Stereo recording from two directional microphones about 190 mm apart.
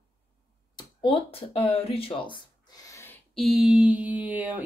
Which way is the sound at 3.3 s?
Centre (ahead or behind).